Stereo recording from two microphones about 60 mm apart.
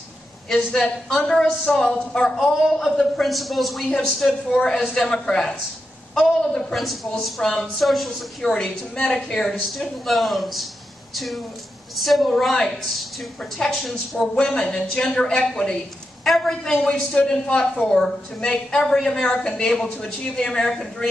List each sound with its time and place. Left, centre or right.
0.7 s a woman's voice: centre
6.8 s a man's voice: centre
8.6 s a woman's voice: left
9.3 s a man's voice: centre
14.4 s a woman's voice: centre
16.8 s a woman's voice: centre